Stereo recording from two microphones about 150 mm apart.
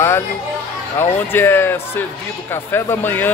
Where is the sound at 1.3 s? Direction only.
15° left (ahead or behind).